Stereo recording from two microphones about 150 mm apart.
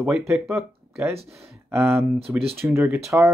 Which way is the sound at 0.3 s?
20° right (ahead or behind).